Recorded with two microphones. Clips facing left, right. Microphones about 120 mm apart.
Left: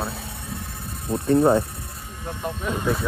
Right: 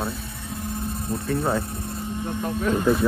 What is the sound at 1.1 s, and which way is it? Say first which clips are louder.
Speech: left 8 dB; 25° left (ahead or behind).